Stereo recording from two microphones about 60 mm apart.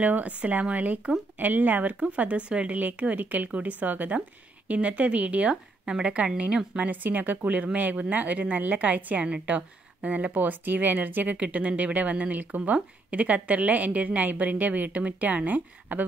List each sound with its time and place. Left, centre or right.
0.0 s speech: right
6.9 s speech: right